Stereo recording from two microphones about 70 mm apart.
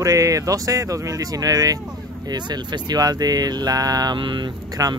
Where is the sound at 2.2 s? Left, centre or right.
Right.